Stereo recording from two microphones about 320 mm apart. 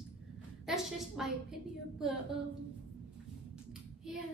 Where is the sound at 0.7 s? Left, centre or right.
Centre.